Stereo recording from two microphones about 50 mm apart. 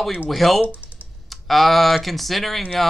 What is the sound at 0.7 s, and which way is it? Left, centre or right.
Computer keyboard, right.